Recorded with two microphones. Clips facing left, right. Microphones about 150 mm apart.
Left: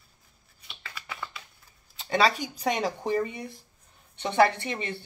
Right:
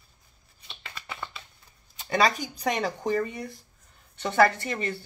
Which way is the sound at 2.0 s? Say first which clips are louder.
Even; 30° left (ahead or behind).